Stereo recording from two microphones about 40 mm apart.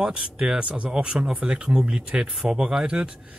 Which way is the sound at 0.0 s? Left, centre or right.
Centre.